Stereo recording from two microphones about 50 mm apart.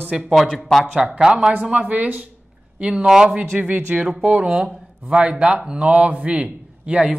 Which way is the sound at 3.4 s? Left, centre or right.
Right.